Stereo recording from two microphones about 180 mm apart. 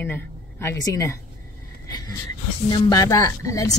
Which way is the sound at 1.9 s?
20° left (ahead or behind).